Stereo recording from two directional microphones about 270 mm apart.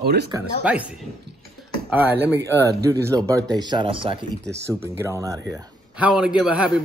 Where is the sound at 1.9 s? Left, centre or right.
Centre.